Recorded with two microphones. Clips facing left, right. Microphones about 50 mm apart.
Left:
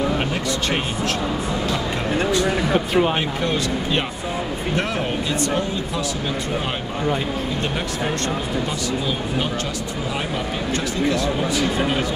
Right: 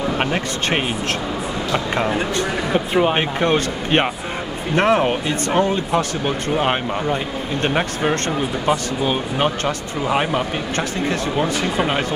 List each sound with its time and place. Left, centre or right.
2.4 s speech: centre
3.4 s speech: right